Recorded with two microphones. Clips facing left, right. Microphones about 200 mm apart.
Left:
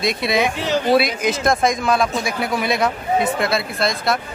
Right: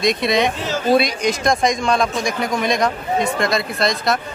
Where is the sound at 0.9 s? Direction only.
5° left (ahead or behind).